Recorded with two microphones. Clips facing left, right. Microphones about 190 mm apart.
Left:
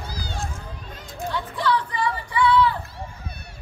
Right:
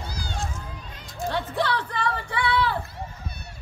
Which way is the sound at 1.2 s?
65° right (ahead or behind).